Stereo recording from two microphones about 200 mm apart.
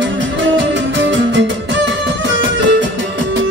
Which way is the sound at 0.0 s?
65° right (ahead or behind).